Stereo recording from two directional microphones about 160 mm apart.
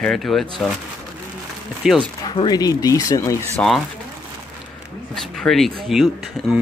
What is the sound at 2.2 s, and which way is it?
Speech, 25° left (ahead or behind).